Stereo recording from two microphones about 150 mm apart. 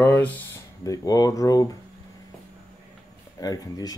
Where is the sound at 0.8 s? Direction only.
25° left (ahead or behind).